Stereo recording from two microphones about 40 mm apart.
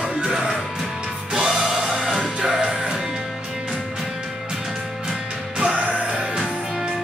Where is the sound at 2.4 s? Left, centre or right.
Centre.